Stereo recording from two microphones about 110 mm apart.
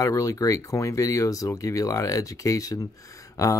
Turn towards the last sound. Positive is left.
turn(degrees=30)  # may be behind; listen again after turning